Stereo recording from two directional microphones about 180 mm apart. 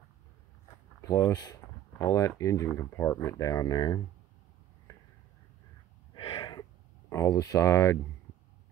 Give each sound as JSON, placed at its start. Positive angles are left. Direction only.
{"t": 1.0, "sound": "speech", "side_deg": 15}
{"t": 6.1, "sound": "a sound", "side_deg": 25}
{"t": 7.1, "sound": "speech", "side_deg": 15}